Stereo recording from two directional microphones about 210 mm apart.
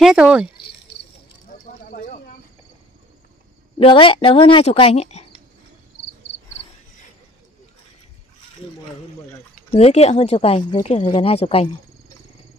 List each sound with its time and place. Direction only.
0.0 s speech: 5° right (ahead or behind)
1.7 s a sound: 40° left (ahead or behind)
3.7 s speech: 25° left (ahead or behind)
9.7 s speech: 30° left (ahead or behind)